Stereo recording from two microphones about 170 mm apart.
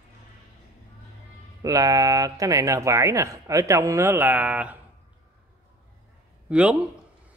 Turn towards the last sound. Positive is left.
turn(degrees=-5)  # may be behind; listen again after turning